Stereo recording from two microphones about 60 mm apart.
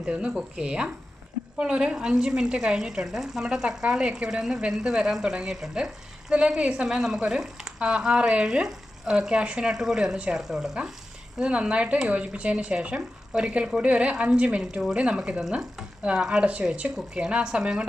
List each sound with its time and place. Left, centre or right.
0.0 s speech: centre